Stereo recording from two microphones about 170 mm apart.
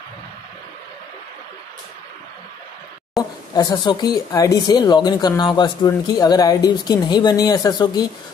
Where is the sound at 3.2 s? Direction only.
25° left (ahead or behind).